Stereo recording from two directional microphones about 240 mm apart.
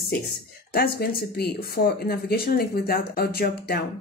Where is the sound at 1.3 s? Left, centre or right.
Left.